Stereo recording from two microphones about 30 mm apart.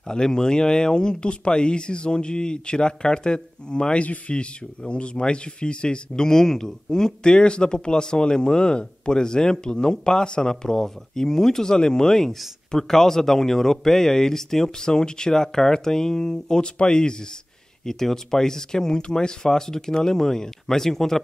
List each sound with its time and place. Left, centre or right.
0.1 s speech: left
14.9 s speech: left
17.8 s speech: centre